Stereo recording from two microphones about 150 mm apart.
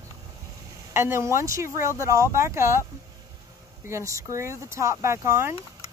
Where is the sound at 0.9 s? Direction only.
15° right (ahead or behind).